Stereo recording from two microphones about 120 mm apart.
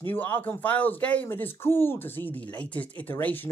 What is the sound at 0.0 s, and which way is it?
Speech, 15° left (ahead or behind).